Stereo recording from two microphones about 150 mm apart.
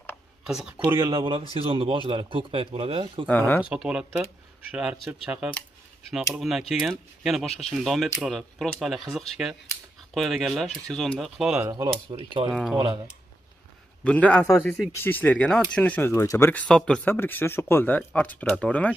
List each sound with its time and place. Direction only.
0.4 s speech: 5° right (ahead or behind)
0.7 s speech: 20° right (ahead or behind)
1.5 s speech: 40° right (ahead or behind)
3.3 s speech: 10° left (ahead or behind)
3.6 s speech: 5° right (ahead or behind)
11.7 s speech: 30° right (ahead or behind)
12.4 s speech: centre (ahead or behind)
12.7 s speech: 20° right (ahead or behind)
14.0 s speech: 10° left (ahead or behind)
15.0 s speech: 10° left (ahead or behind)
16.6 s speech: 5° left (ahead or behind)